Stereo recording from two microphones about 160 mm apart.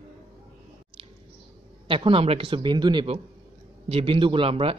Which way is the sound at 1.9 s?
35° right (ahead or behind).